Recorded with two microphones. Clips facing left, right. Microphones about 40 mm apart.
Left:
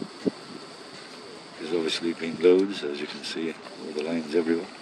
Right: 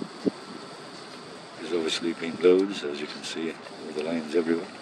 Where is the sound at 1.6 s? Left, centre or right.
Centre.